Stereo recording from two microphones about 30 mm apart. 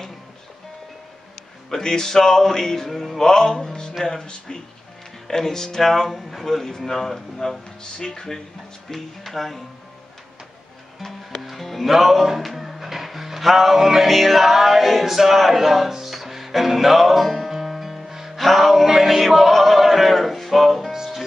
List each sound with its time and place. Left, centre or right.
1.7 s music: centre
3.2 s music: centre
5.3 s music: centre
7.8 s speech: left
8.9 s music: centre
11.1 s music: centre
18.4 s music: centre